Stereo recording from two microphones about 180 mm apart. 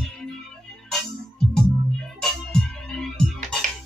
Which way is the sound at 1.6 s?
Centre (ahead or behind).